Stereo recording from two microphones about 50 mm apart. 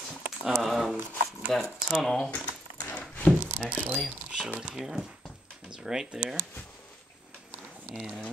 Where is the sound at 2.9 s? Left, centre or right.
Left.